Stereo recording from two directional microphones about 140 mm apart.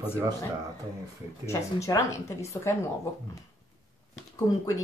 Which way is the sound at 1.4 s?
20° left (ahead or behind).